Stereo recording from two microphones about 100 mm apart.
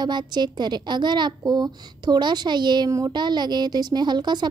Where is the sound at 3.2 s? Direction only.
45° right (ahead or behind).